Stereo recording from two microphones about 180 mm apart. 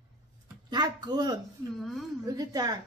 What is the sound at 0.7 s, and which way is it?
Speech, 25° right (ahead or behind).